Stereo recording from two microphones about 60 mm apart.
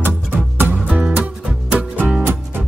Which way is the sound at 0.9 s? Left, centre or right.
Centre.